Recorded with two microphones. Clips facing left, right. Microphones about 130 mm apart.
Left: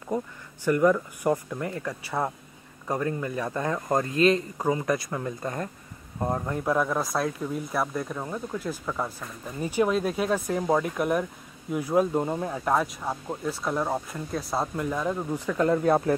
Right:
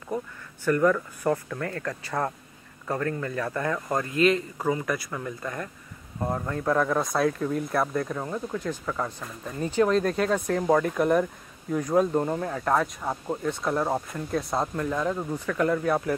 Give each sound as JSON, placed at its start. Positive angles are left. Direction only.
{"t": 0.7, "sound": "speech", "side_deg": 15}
{"t": 6.1, "sound": "speech", "side_deg": 15}